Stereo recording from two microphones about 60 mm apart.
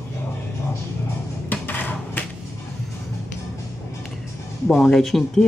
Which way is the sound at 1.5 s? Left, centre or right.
Left.